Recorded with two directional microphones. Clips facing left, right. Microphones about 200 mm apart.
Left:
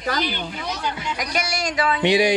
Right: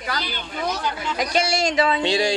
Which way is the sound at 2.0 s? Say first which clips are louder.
Left 3 dB; 15° left (ahead or behind).